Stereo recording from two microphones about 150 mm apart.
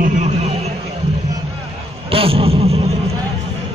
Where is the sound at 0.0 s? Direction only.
50° right (ahead or behind).